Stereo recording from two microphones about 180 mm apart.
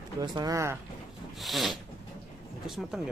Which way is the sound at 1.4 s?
Centre (ahead or behind).